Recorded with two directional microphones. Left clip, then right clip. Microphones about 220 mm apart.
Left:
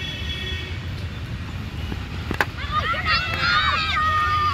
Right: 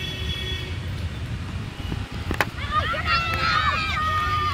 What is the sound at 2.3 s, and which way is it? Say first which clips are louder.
Vehicle: left 1 dB; 10° right (ahead or behind).